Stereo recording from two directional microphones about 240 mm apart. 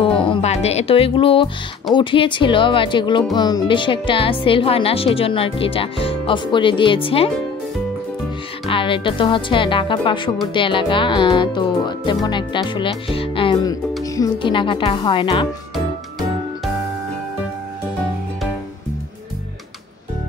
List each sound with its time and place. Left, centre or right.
0.2 s speech: left
8.6 s speech: left
15.7 s music: centre